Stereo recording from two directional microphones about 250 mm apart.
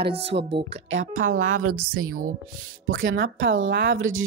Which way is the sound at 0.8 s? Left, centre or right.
Right.